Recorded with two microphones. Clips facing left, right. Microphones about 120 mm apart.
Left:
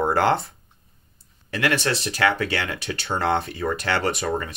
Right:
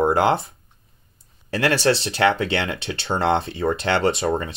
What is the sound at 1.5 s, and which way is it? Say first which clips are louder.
Speech: right 4 dB; 30° right (ahead or behind).